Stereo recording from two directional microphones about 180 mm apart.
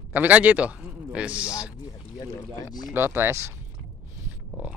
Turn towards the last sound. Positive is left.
turn(degrees=-15)  # may be behind; listen again after turning